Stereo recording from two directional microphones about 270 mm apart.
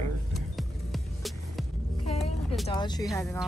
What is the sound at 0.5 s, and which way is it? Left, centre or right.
Music, centre.